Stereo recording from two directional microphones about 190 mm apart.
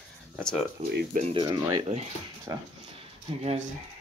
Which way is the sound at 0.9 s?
60° right (ahead or behind).